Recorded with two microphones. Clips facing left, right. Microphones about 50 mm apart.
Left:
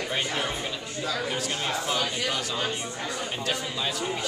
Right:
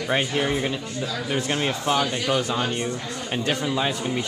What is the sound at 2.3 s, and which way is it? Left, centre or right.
Speech, centre.